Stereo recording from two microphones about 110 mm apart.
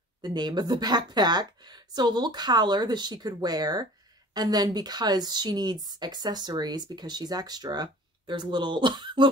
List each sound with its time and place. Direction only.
0.2 s a woman's voice: 40° right (ahead or behind)